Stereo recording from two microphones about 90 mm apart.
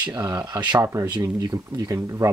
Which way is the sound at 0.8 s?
30° right (ahead or behind).